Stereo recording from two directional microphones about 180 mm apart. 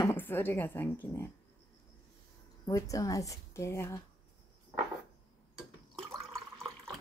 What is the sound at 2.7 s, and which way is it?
Speech, 20° left (ahead or behind).